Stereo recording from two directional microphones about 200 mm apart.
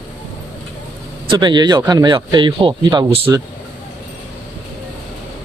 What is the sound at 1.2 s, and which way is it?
Speech, 20° right (ahead or behind).